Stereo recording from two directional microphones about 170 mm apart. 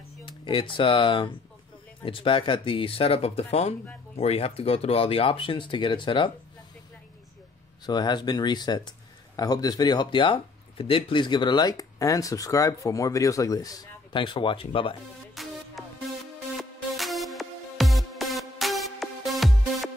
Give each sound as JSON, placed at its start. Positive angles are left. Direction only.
{"t": 0.2, "sound": "speech", "side_deg": 30}
{"t": 7.8, "sound": "speech", "side_deg": 25}
{"t": 15.4, "sound": "music", "side_deg": 0}
{"t": 16.5, "sound": "music", "side_deg": 0}